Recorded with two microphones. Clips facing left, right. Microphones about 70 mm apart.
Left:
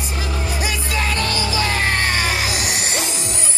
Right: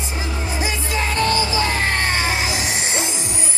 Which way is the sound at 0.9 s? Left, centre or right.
Right.